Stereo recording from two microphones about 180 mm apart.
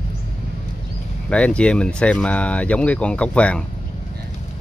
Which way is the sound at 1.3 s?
5° left (ahead or behind).